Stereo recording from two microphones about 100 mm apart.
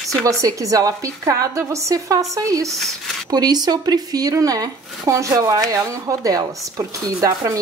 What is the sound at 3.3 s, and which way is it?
Speech, 40° right (ahead or behind).